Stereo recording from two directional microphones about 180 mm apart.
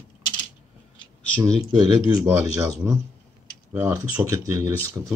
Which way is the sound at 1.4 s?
20° right (ahead or behind).